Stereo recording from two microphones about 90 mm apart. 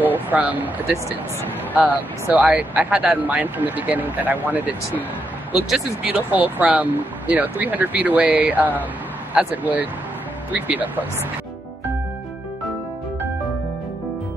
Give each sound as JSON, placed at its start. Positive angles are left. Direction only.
{"t": 0.0, "sound": "speech", "side_deg": -20}
{"t": 6.0, "sound": "speech", "side_deg": -20}